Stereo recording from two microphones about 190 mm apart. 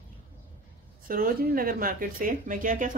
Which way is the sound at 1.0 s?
50° right (ahead or behind).